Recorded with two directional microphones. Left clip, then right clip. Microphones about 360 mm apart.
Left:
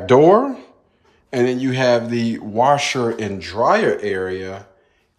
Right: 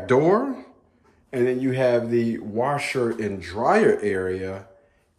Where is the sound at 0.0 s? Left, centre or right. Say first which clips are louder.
Left 7 dB; centre.